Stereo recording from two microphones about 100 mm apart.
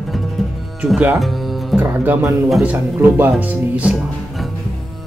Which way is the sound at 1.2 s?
Centre (ahead or behind).